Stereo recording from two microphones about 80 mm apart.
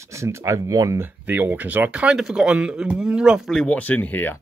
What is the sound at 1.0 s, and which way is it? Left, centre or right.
Speech, right.